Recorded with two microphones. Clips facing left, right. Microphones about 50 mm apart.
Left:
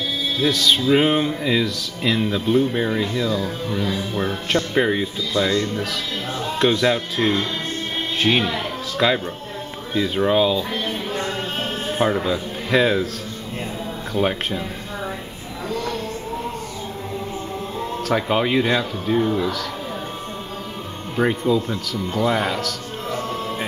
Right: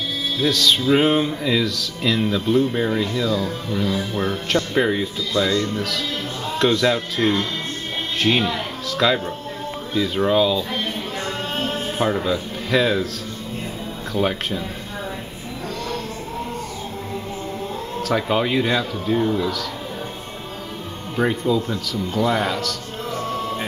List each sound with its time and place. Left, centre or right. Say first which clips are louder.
0.4 s music: even; centre
10.3 s music: even; centre
12.0 s speech: left 1 dB; centre
14.1 s music: even; centre
18.0 s music: even; centre
21.2 s music: left 1 dB; centre